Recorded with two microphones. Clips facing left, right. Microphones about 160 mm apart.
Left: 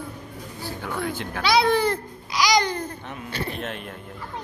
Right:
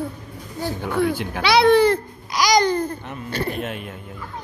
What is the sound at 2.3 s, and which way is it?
Babbling, 45° right (ahead or behind).